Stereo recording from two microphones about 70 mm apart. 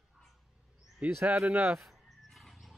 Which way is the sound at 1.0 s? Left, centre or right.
Centre.